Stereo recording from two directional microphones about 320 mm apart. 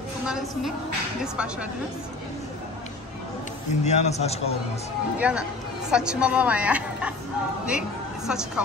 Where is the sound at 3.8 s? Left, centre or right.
Left.